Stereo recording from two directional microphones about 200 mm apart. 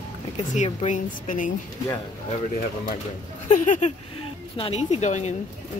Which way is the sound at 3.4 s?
40° left (ahead or behind).